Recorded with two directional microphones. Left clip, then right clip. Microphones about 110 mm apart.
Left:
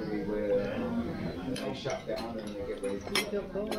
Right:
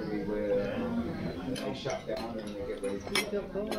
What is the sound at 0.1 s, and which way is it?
Music, 5° right (ahead or behind).